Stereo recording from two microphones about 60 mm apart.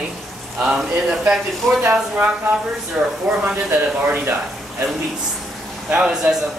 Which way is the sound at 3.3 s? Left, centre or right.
Right.